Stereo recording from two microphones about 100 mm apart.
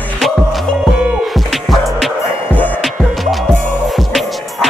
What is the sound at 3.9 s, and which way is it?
Music, centre (ahead or behind).